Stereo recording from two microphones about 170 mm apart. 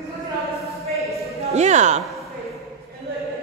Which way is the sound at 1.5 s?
45° right (ahead or behind).